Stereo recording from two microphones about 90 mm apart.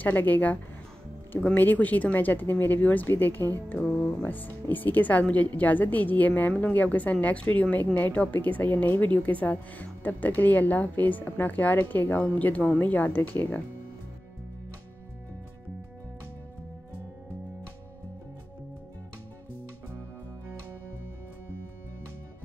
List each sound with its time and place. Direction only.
0.0 s speech: 20° left (ahead or behind)